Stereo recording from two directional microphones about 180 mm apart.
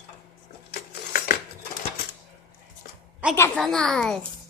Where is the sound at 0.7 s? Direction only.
55° left (ahead or behind).